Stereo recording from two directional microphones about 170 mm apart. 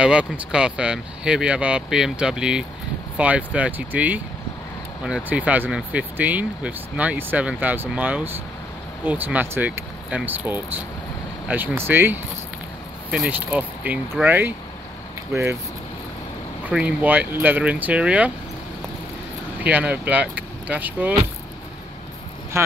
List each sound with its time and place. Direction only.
0.0 s speech: 5° right (ahead or behind)
16.6 s speech: 10° right (ahead or behind)
19.6 s speech: 10° right (ahead or behind)